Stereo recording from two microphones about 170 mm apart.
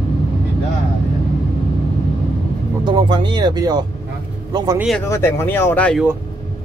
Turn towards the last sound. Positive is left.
turn(degrees=10)  # may be behind; listen again after turning